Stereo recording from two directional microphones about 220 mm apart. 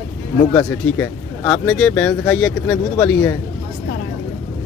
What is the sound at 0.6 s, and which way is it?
Speech, 15° left (ahead or behind).